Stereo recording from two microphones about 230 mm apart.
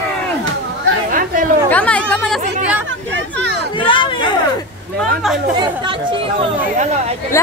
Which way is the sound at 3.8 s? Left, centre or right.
Left.